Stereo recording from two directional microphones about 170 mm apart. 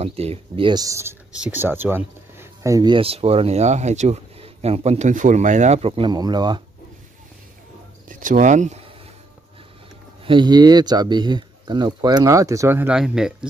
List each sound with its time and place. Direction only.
0.0 s speech: 35° right (ahead or behind)
8.1 s speech: 50° right (ahead or behind)
10.2 s speech: 25° right (ahead or behind); by 13.5 s 5° right (ahead or behind)